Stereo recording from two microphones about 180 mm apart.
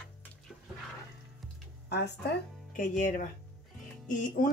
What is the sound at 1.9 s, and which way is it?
Speech, 65° left (ahead or behind).